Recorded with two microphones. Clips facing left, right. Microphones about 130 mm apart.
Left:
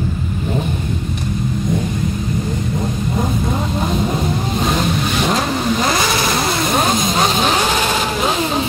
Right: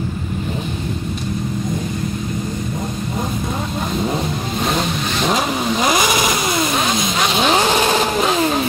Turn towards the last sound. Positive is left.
turn(degrees=40)  # may be behind; listen again after turning